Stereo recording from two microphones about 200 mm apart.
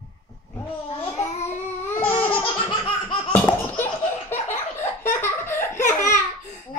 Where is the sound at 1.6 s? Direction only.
10° left (ahead or behind).